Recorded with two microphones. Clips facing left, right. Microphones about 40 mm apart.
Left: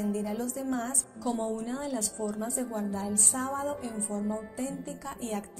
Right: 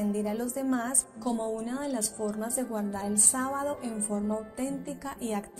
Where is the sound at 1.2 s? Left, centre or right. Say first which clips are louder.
Even; centre.